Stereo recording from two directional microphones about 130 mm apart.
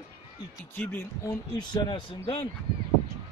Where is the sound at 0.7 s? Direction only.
15° left (ahead or behind).